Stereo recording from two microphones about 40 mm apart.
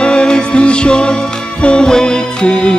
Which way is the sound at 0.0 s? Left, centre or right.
Left.